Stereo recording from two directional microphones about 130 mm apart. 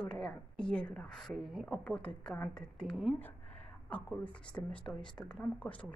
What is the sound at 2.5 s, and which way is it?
Speech, centre (ahead or behind).